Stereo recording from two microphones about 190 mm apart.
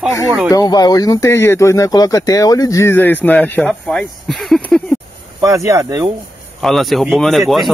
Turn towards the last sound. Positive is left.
turn(degrees=0)  # may be behind; listen again after turning